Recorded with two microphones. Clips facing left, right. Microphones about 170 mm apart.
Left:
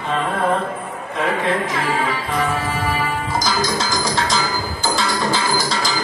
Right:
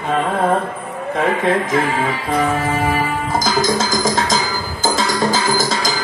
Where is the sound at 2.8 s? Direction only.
50° right (ahead or behind).